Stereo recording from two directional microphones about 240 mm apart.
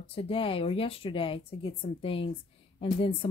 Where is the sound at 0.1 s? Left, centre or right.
Left.